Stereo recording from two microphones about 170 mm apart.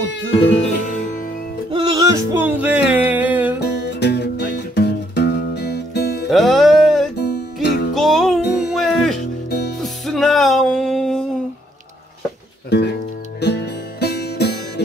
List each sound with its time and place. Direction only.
1.7 s music: 25° right (ahead or behind)
2.3 s music: 10° right (ahead or behind)
3.5 s music: 80° left
6.3 s music: centre (ahead or behind)
7.2 s music: 75° left (ahead or behind)
7.9 s music: centre (ahead or behind)
9.5 s music: 75° left (ahead or behind)
9.8 s music: centre (ahead or behind)
12.6 s music: 80° left